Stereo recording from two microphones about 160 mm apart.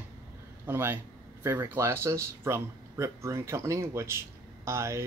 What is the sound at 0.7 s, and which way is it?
Speech, 15° right (ahead or behind).